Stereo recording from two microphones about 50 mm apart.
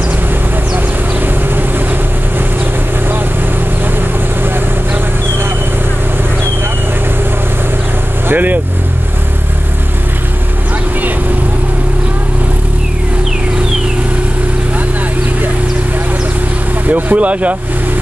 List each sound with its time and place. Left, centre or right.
8.3 s vehicle: right
16.8 s speech: right